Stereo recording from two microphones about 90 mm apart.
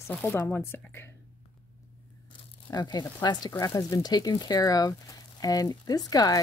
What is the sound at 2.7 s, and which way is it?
Speech, 50° left (ahead or behind).